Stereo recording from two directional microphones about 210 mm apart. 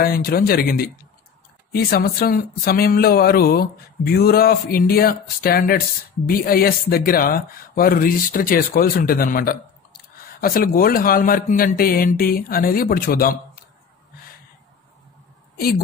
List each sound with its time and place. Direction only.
0.0 s speech: 45° left (ahead or behind)